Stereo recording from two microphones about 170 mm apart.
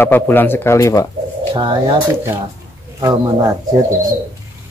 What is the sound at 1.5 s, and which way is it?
Speech, 25° right (ahead or behind).